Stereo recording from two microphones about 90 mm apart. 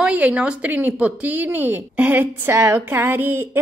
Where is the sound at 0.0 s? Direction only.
15° right (ahead or behind).